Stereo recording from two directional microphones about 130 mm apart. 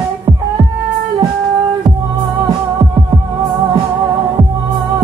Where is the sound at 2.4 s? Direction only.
30° right (ahead or behind).